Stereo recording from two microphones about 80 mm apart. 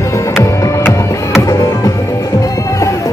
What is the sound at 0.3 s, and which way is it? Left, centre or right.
Music, left.